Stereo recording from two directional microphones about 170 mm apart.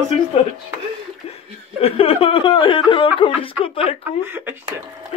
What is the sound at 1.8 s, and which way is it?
Speech, 35° left (ahead or behind).